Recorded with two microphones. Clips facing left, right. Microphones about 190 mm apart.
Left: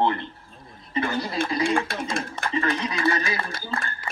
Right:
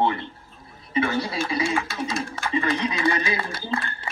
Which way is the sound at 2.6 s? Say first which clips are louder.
Right 2 dB; 15° right (ahead or behind).